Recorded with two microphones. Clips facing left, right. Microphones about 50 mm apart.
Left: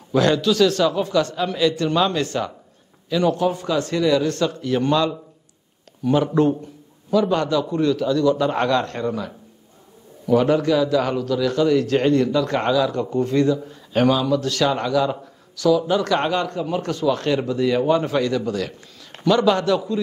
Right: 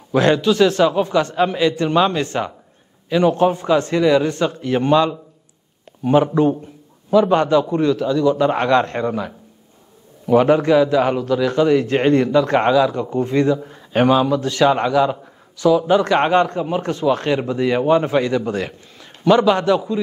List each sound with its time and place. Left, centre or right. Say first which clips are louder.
0.1 s a man's voice: right 3 dB; right
6.3 s a man's voice: right 2 dB; centre
7.1 s a man's voice: right 5 dB; right